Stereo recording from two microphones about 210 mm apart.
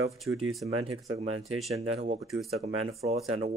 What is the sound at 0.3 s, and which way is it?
Speech, 15° right (ahead or behind).